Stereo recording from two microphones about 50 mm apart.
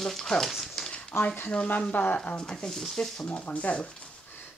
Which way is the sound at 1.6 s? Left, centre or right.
Left.